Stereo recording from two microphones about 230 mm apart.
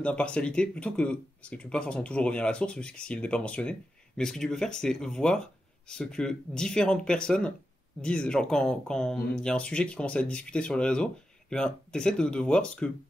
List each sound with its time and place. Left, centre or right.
0.0 s speech: centre